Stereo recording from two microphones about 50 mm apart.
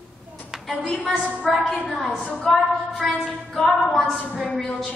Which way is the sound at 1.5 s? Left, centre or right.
Centre.